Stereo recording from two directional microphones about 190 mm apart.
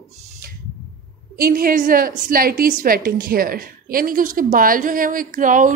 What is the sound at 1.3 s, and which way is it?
A woman's voice, 50° right (ahead or behind).